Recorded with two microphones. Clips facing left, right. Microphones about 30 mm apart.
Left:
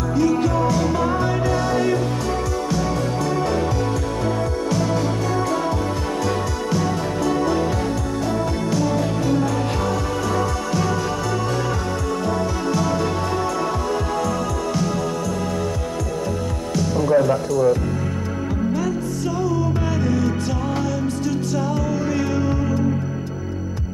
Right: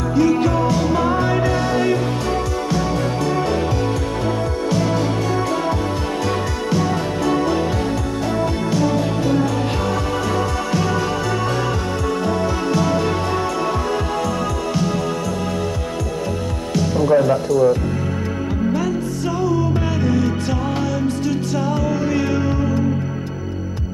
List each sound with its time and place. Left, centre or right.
0.1 s music: right
6.7 s music: right
8.7 s music: right
12.7 s music: right
16.7 s music: right
19.5 s music: right